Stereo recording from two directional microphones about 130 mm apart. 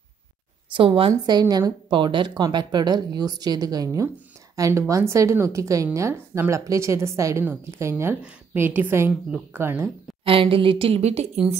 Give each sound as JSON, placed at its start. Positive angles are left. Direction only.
{"t": 0.7, "sound": "a woman's voice", "side_deg": -45}
{"t": 10.2, "sound": "a woman's voice", "side_deg": -45}